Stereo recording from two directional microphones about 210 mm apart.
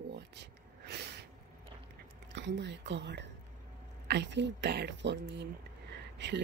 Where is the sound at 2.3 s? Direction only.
55° right (ahead or behind).